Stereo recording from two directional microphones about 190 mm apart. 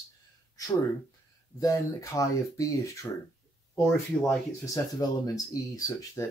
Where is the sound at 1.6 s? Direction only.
15° left (ahead or behind).